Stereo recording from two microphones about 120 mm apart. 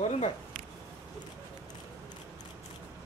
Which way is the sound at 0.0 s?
60° left (ahead or behind).